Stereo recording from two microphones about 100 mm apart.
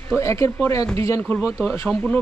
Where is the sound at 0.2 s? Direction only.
30° left (ahead or behind).